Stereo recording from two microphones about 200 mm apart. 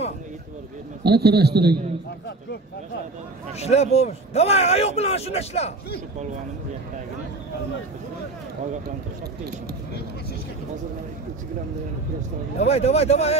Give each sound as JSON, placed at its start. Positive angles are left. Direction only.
{"t": 1.0, "sound": "a man's voice", "side_deg": -55}
{"t": 3.5, "sound": "a man's voice", "side_deg": 30}
{"t": 12.5, "sound": "a man's voice", "side_deg": 30}